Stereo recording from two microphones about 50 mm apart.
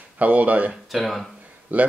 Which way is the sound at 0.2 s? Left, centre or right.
Right.